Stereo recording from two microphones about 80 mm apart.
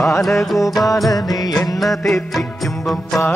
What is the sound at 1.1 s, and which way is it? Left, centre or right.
Music, left.